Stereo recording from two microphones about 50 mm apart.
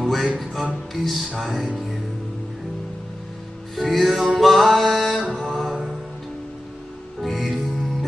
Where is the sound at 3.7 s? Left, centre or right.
Centre.